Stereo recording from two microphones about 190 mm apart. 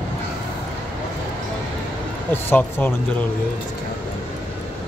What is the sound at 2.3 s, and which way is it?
Speech, 10° left (ahead or behind).